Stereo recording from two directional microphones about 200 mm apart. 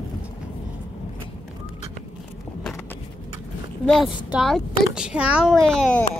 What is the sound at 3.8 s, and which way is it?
A child's voice, centre (ahead or behind).